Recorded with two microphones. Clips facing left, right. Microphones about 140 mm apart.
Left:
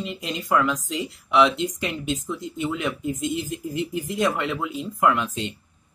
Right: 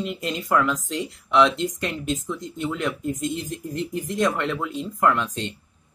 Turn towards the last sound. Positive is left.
turn(degrees=5)  # may be behind; listen again after turning